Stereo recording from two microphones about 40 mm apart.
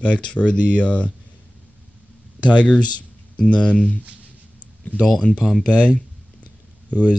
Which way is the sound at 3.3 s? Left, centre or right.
Left.